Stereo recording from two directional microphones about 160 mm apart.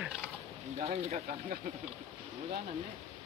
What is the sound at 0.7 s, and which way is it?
Speech, 40° right (ahead or behind).